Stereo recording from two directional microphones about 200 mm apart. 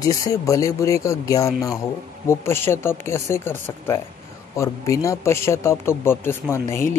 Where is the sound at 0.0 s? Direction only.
15° left (ahead or behind).